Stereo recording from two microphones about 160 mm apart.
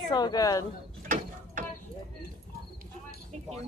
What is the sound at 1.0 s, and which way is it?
Mechanisms, 55° right (ahead or behind).